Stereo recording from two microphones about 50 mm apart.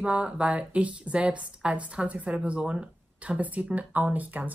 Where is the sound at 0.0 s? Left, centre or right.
Right.